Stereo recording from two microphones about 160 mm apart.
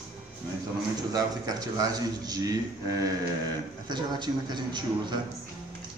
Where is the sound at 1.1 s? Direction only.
25° right (ahead or behind).